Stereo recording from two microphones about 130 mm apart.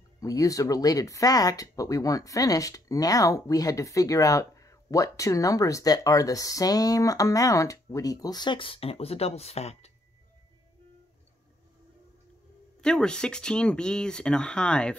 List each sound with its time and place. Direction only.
0.2 s speech: 25° left (ahead or behind); by 9.8 s 55° left (ahead or behind)
12.8 s speech: 5° left (ahead or behind)